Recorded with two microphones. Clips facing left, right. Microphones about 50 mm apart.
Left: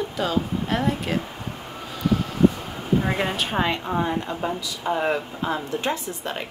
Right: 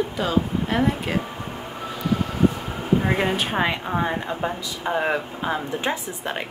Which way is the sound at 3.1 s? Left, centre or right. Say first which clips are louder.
Right 2 dB; centre.